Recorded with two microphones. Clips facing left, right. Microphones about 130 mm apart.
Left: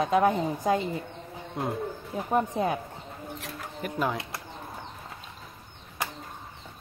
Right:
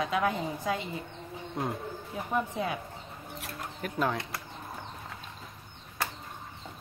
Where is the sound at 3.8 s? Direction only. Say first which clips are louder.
Left 1 dB; 5° left (ahead or behind).